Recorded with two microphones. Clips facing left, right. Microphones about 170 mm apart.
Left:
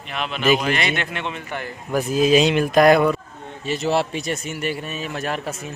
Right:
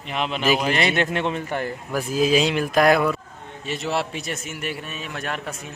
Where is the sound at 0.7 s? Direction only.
35° right (ahead or behind).